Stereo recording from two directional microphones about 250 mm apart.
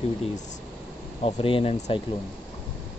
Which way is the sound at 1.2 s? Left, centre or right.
Left.